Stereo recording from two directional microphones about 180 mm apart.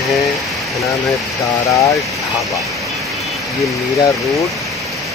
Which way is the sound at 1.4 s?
20° left (ahead or behind).